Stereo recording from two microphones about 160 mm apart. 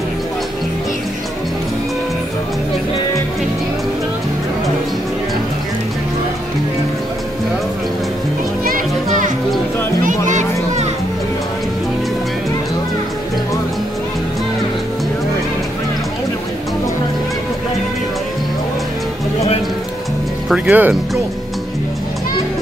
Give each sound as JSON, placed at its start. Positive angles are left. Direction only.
{"t": 8.6, "sound": "music", "side_deg": -55}
{"t": 20.4, "sound": "music", "side_deg": -5}